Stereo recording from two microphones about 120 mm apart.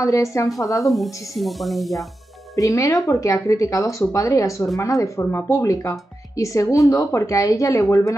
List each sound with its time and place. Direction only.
0.0 s speech: 25° left (ahead or behind)
0.8 s speech: centre (ahead or behind)
2.5 s speech: 25° left (ahead or behind)